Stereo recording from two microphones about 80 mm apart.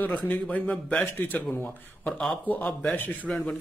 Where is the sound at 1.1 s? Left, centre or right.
Left.